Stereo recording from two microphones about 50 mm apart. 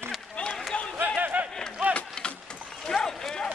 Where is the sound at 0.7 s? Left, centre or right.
Left.